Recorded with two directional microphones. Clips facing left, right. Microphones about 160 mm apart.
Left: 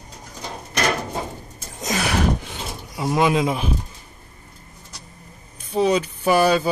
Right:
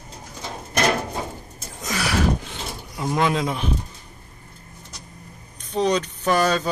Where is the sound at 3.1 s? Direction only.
10° left (ahead or behind).